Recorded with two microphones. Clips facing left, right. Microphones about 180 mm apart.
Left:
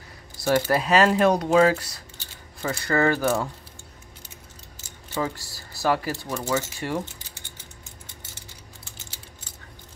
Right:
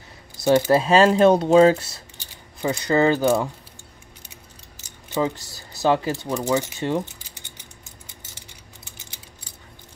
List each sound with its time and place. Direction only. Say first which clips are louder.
0.4 s speech: right 5 dB; 20° right (ahead or behind)
5.1 s speech: right 5 dB; 20° right (ahead or behind)
8.4 s a sound: even; 15° right (ahead or behind)